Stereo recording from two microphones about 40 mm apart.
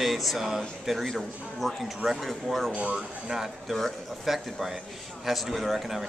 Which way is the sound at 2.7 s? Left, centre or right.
Right.